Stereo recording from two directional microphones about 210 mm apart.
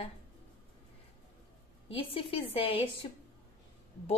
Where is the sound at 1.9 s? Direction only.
25° left (ahead or behind).